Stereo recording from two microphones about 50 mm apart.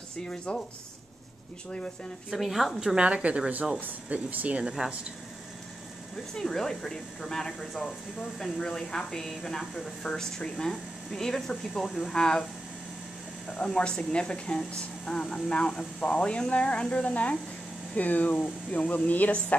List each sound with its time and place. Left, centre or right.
0.3 s speech: centre
2.3 s a woman's voice: centre
3.0 s speech: right
6.3 s speech: centre
13.5 s speech: centre; by 19.3 s left